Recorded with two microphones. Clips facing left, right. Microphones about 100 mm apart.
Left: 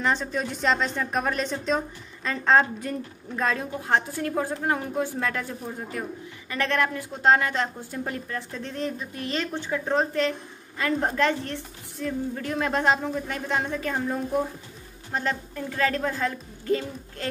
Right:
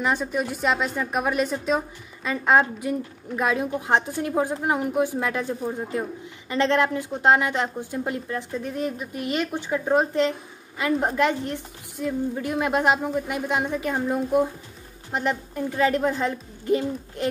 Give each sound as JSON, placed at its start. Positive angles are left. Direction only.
{"t": 0.0, "sound": "a woman's voice", "side_deg": -10}